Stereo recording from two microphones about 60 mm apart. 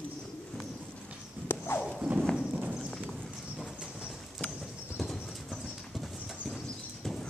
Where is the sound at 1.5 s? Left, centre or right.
Left.